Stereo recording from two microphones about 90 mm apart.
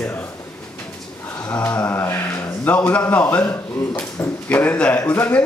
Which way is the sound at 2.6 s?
15° left (ahead or behind).